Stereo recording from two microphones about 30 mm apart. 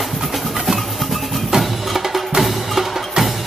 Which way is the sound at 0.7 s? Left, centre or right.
Centre.